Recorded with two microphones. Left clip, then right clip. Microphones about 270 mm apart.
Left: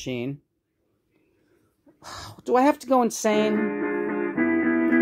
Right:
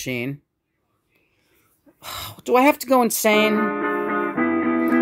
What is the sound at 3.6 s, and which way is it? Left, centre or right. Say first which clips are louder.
Music: right 4 dB; centre.